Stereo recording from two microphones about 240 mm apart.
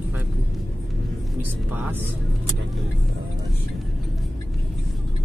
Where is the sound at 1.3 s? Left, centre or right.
Centre.